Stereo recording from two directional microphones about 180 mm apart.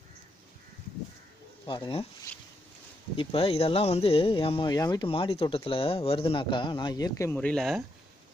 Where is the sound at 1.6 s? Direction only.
25° left (ahead or behind).